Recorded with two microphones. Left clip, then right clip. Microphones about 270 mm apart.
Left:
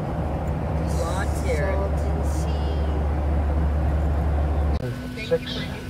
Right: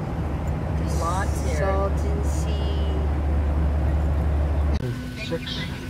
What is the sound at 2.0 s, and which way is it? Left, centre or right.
Vehicle, centre.